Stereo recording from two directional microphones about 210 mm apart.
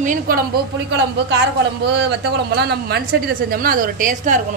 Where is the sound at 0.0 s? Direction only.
40° right (ahead or behind).